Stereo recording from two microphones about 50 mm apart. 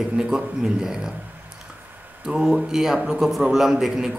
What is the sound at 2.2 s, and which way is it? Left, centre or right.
A man's voice, centre.